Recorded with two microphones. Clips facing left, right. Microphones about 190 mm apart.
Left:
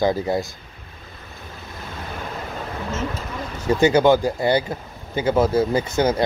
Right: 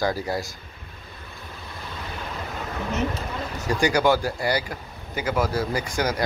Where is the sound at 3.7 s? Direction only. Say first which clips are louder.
Left 5 dB; 25° left (ahead or behind).